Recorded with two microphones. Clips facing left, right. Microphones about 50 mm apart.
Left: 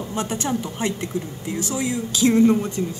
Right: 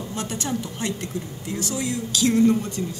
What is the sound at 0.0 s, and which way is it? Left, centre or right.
A woman's voice, centre.